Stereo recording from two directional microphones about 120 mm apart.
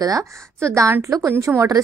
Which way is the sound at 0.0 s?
30° right (ahead or behind).